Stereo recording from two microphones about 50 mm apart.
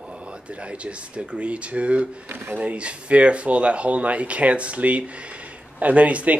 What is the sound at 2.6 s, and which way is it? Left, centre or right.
Speech, right.